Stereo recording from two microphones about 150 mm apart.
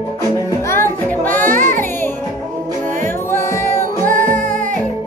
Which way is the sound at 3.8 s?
65° right (ahead or behind).